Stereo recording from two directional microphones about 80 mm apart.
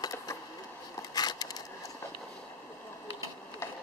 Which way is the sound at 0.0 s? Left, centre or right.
Left.